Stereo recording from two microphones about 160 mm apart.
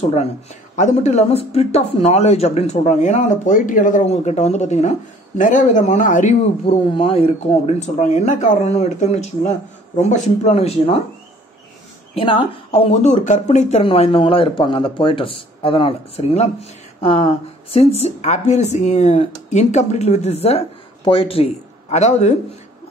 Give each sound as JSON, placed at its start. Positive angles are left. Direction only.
{"t": 0.0, "sound": "speech", "side_deg": 45}
{"t": 6.7, "sound": "speech", "side_deg": 35}
{"t": 12.2, "sound": "a woman's voice", "side_deg": 35}